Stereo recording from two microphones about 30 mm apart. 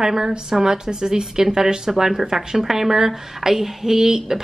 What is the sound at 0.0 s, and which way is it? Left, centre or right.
A woman's voice, centre.